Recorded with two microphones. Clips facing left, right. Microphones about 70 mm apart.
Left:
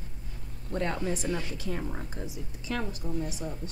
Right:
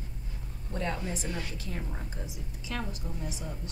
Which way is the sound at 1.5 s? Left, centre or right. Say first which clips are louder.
Left 5 dB; left.